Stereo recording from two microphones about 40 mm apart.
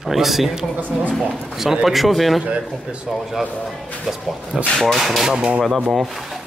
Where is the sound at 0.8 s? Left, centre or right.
Right.